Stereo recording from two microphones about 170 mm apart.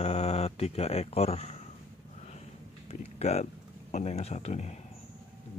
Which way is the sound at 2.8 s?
40° left (ahead or behind).